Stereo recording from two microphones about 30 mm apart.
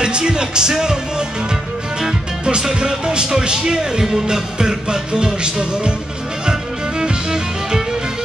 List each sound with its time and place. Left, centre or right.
0.0 s speech: right
2.8 s speech: right
7.0 s music: right